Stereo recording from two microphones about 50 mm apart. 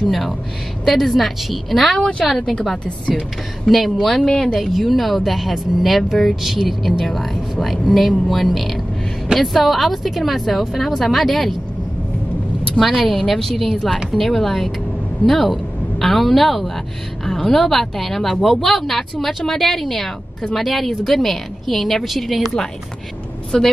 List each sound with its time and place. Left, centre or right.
0.0 s speech: centre
2.0 s speech: centre
2.2 s speech: centre
4.6 s speech: centre
8.3 s speech: centre
12.7 s speech: centre
23.5 s speech: centre